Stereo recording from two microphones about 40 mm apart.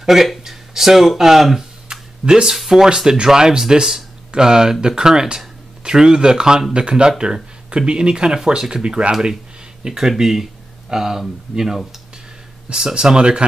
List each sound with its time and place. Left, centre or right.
0.0 s speech: centre
2.5 s speech: centre
2.8 s speech: centre
9.8 s speech: centre